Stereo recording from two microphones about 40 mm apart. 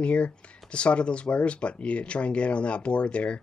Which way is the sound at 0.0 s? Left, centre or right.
Left.